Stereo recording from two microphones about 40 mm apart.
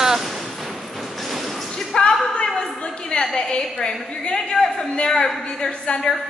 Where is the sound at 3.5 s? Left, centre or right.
Centre.